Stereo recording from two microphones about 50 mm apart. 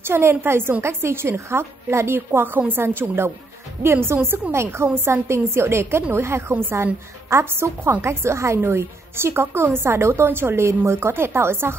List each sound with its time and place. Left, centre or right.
0.0 s a woman's voice: right
8.5 s a woman's voice: right